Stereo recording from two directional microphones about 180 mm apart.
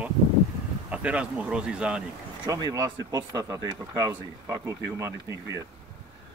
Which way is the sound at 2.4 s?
20° right (ahead or behind).